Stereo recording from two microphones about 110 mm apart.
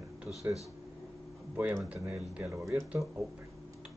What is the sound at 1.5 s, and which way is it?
Speech, 20° right (ahead or behind).